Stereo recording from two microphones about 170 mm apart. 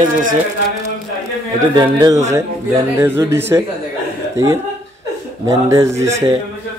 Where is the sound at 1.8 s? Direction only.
25° right (ahead or behind).